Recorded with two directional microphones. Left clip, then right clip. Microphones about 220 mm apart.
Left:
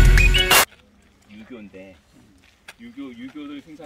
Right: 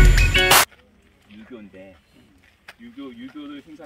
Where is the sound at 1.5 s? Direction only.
45° left (ahead or behind).